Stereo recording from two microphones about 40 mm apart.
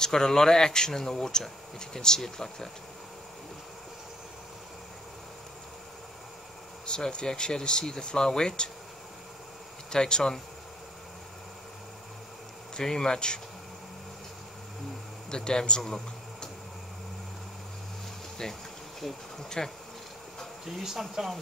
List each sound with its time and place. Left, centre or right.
0.0 s speech: centre
6.9 s speech: left
9.8 s speech: centre
12.7 s speech: centre
15.3 s speech: centre
18.4 s insect: centre
20.8 s speech: centre